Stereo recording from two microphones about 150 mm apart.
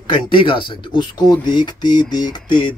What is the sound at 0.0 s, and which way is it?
Speech, 35° left (ahead or behind).